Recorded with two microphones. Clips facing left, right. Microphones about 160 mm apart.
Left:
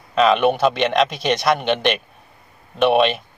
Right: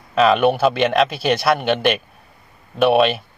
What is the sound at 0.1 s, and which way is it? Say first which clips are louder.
Speech: right 1 dB; 5° right (ahead or behind).